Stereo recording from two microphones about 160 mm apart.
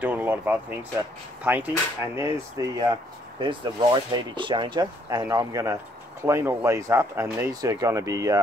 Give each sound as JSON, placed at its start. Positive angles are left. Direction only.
{"t": 0.0, "sound": "speech", "side_deg": -10}
{"t": 3.3, "sound": "speech", "side_deg": -30}